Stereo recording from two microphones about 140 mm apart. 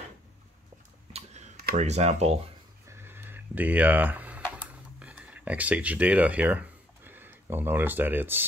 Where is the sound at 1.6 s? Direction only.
55° right (ahead or behind).